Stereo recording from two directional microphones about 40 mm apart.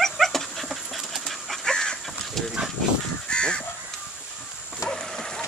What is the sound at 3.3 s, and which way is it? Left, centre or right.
Crow, left.